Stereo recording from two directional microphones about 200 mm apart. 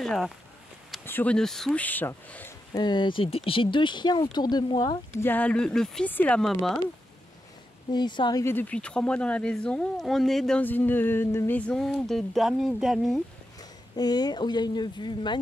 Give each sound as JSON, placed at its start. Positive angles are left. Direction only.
{"t": 0.0, "sound": "speech", "side_deg": 0}
{"t": 2.7, "sound": "speech", "side_deg": 20}
{"t": 7.9, "sound": "speech", "side_deg": 20}
{"t": 13.6, "sound": "speech", "side_deg": 20}